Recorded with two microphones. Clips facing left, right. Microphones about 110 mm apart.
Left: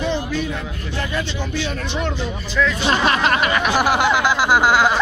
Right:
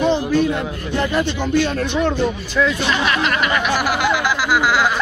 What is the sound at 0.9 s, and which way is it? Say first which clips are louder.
Speech: right 6 dB; 50° right (ahead or behind).